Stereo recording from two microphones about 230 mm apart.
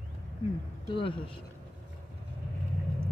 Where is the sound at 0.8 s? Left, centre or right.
Left.